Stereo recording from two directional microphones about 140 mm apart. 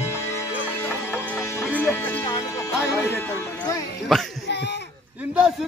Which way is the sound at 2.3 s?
25° left (ahead or behind).